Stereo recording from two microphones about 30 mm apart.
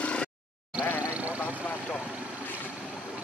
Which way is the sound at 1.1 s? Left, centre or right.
Right.